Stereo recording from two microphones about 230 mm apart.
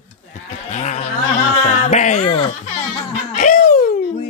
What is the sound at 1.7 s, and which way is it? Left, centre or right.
Laughter, left.